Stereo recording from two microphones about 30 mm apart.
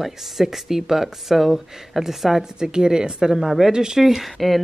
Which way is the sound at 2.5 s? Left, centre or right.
Right.